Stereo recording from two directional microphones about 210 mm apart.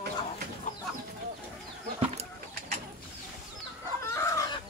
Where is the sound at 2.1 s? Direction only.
30° right (ahead or behind).